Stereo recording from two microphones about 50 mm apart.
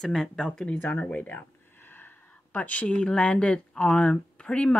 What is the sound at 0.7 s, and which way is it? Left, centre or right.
Speech, left.